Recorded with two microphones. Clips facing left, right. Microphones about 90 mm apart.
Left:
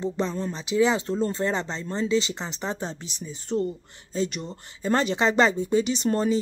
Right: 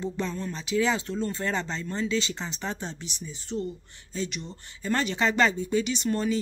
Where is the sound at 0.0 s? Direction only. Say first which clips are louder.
Left 4 dB; 25° left (ahead or behind).